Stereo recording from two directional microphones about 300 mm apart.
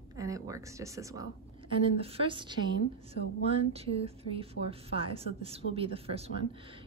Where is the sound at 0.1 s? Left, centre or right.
Centre.